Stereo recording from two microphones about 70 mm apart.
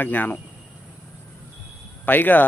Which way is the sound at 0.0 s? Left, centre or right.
Left.